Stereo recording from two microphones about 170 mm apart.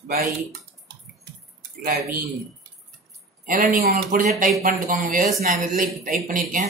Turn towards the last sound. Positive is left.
turn(degrees=-55)  # may be behind; listen again after turning